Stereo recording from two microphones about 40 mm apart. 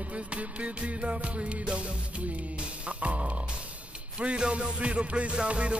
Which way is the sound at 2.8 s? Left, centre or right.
Right.